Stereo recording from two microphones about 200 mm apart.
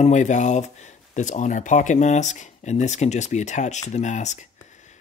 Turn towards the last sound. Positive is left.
turn(degrees=35)  # may be behind; listen again after turning